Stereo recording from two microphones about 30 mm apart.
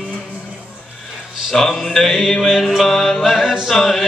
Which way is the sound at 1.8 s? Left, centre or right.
Centre.